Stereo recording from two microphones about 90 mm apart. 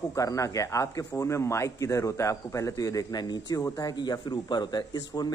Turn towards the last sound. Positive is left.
turn(degrees=50)  # may be behind; listen again after turning